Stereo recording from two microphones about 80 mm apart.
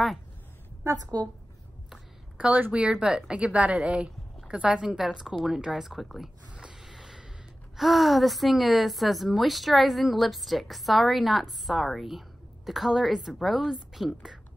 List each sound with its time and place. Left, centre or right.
0.8 s a woman's voice: right
1.9 s a woman's voice: centre
6.5 s snort: centre
7.7 s a woman's voice: centre